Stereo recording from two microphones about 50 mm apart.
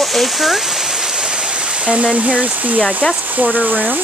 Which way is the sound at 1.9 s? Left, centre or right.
Right.